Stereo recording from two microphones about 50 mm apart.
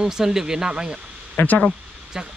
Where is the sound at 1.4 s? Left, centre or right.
Left.